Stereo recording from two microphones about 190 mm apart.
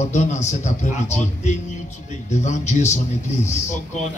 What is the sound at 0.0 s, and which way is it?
A man's voice, 40° left (ahead or behind).